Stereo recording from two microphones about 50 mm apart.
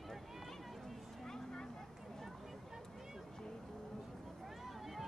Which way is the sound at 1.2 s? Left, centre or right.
Centre.